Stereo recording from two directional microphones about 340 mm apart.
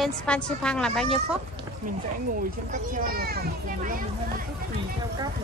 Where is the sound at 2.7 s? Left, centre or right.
Right.